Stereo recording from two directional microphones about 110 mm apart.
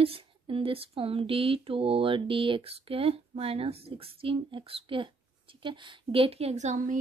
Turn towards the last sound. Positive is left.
turn(degrees=-90)